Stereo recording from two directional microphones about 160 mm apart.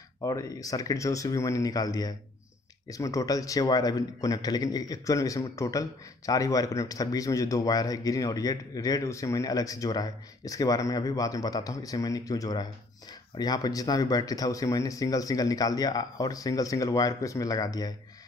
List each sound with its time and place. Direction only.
0.2 s a man's voice: 20° left (ahead or behind)